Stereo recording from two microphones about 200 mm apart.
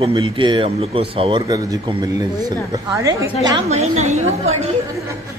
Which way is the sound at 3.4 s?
30° right (ahead or behind).